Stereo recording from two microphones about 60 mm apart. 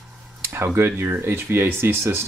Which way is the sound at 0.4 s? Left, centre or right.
Right.